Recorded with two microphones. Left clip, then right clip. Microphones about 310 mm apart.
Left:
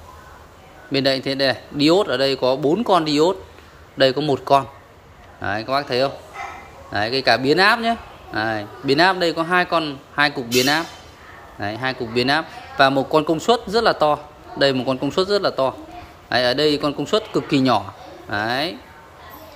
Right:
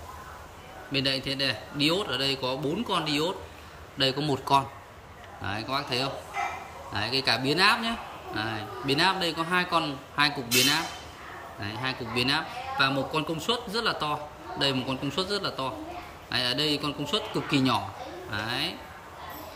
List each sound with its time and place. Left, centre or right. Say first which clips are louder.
0.9 s a man's voice: left 8 dB; centre